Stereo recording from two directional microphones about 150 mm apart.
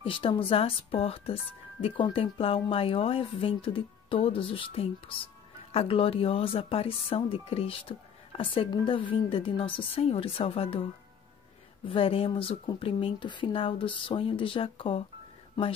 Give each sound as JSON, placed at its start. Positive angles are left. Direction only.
{"t": 0.0, "sound": "speech", "side_deg": 35}
{"t": 11.9, "sound": "speech", "side_deg": 40}